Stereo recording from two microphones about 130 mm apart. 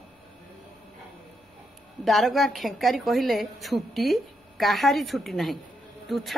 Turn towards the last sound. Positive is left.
turn(degrees=0)  # may be behind; listen again after turning